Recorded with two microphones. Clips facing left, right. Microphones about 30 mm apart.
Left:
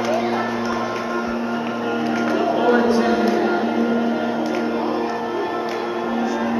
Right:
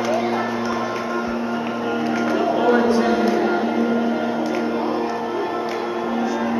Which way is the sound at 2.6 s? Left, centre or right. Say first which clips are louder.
Even; centre.